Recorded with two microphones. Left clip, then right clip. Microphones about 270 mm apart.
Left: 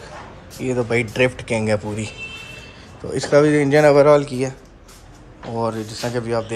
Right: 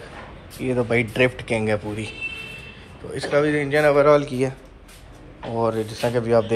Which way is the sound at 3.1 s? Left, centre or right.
Centre.